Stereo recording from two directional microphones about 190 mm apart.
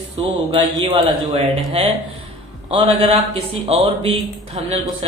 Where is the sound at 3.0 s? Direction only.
30° right (ahead or behind).